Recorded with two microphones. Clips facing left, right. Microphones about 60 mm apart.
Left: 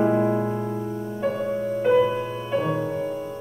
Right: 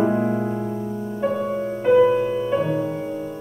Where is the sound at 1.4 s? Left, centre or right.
Centre.